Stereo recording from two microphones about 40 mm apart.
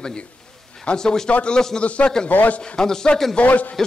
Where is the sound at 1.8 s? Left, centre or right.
Left.